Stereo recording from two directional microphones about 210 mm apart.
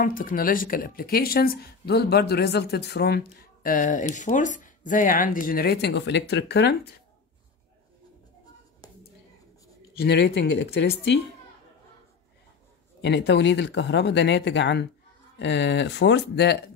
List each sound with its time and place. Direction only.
0.0 s speech: 40° left (ahead or behind)
3.6 s speech: 40° left (ahead or behind)
9.9 s speech: 55° left (ahead or behind)
13.0 s speech: 55° left (ahead or behind)